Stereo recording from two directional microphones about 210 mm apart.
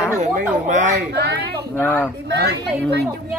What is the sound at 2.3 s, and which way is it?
Speech, 50° right (ahead or behind).